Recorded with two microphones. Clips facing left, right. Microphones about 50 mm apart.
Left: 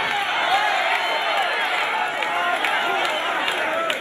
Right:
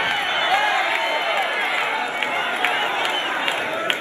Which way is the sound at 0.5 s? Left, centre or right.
Right.